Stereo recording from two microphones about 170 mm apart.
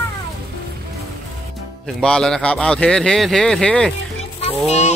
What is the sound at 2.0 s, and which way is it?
Speech, 5° left (ahead or behind).